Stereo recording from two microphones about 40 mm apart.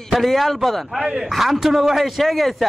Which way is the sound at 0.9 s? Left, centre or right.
Centre.